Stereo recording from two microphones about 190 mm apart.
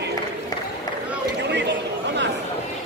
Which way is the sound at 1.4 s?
65° right (ahead or behind).